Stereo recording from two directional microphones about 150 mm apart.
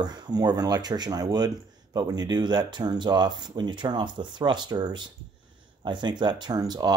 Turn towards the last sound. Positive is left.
turn(degrees=-25)  # may be behind; listen again after turning